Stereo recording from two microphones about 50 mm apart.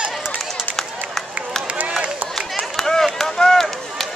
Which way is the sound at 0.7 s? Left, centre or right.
Centre.